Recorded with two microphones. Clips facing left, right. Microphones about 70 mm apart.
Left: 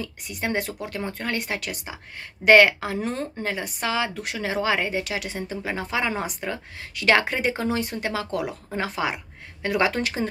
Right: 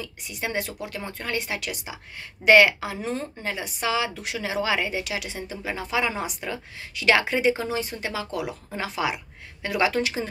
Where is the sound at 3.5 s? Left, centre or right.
Left.